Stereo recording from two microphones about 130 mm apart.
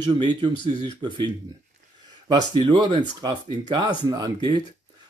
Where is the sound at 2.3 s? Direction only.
35° right (ahead or behind).